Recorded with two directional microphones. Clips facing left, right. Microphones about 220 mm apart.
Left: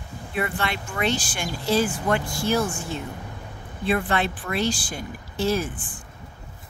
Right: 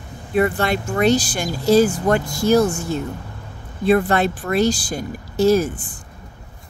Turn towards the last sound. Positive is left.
turn(degrees=-40)  # may be behind; listen again after turning